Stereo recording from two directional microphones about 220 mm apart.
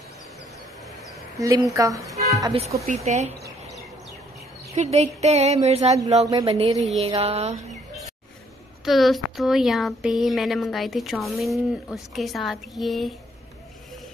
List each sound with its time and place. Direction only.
1.4 s speech: 15° right (ahead or behind)
2.4 s a woman's voice: 25° right (ahead or behind)
4.7 s a woman's voice: 30° right (ahead or behind)
8.8 s speech: centre (ahead or behind)